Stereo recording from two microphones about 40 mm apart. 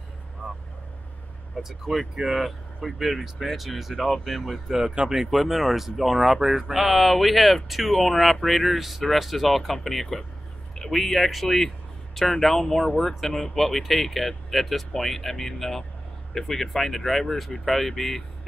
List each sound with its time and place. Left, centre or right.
1.6 s speech: centre
4.6 s speech: centre
5.3 s speech: centre